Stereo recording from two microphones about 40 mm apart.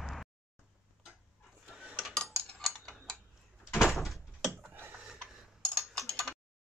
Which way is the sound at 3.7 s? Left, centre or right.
Centre.